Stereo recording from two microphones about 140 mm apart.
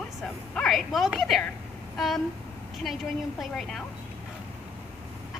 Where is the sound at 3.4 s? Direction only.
5° left (ahead or behind).